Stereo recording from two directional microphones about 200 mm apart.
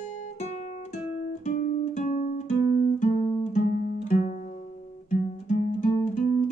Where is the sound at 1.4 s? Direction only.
40° left (ahead or behind).